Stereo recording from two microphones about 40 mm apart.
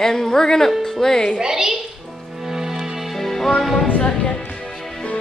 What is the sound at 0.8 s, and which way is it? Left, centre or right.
Speech, centre.